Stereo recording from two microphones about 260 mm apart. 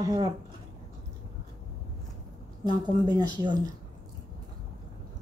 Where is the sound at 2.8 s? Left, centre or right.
Centre.